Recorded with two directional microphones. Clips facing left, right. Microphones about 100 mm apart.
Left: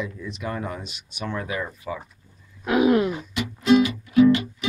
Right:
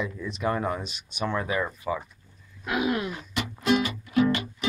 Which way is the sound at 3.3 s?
45° right (ahead or behind).